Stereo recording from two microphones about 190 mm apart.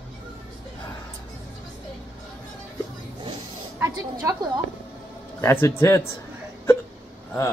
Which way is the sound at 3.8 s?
15° right (ahead or behind).